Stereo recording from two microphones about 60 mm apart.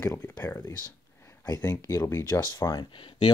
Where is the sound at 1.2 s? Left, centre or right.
Left.